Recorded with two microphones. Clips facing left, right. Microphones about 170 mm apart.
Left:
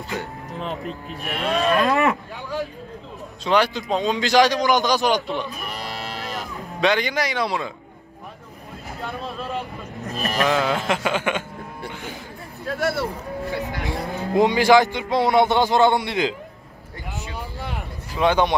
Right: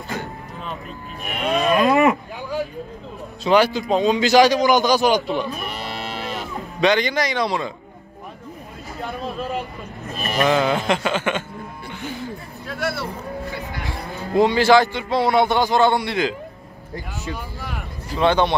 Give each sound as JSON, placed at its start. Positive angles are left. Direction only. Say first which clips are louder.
{"t": 0.6, "sound": "speech", "louder": "left 5 dB", "side_deg": 90}
{"t": 1.2, "sound": "speech", "louder": "right 1 dB", "side_deg": 35}
{"t": 1.6, "sound": "cattle", "louder": "right 3 dB", "side_deg": -15}
{"t": 3.4, "sound": "a man's voice", "louder": "right 3 dB", "side_deg": -5}
{"t": 5.6, "sound": "music", "louder": "right 2 dB", "side_deg": 40}
{"t": 6.8, "sound": "speech", "louder": "right 2 dB", "side_deg": 5}
{"t": 9.0, "sound": "a man's voice", "louder": "right 3 dB", "side_deg": 0}
{"t": 12.6, "sound": "speech", "louder": "left 3 dB", "side_deg": 45}
{"t": 13.8, "sound": "speech", "louder": "left 3 dB", "side_deg": 20}
{"t": 18.1, "sound": "speech", "louder": "right 1 dB", "side_deg": 10}